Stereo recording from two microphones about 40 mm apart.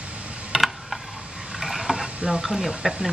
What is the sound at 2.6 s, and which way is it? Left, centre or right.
Speech, centre.